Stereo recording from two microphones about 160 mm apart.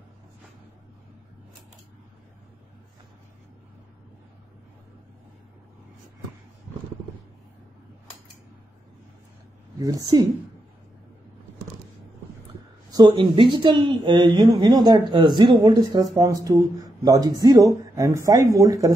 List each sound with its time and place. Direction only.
9.8 s a woman's voice: 20° right (ahead or behind)
12.9 s a woman's voice: 25° right (ahead or behind)